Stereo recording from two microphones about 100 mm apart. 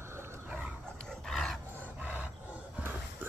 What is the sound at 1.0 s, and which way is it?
Dog, 5° left (ahead or behind).